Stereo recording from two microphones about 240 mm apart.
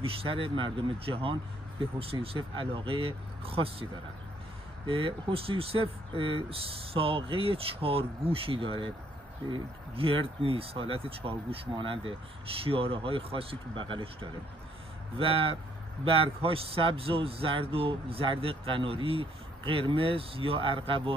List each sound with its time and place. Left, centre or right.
0.0 s speech: right
4.8 s speech: right
15.1 s speech: right